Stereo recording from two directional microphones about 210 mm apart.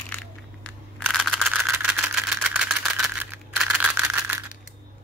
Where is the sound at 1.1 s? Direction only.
Centre (ahead or behind).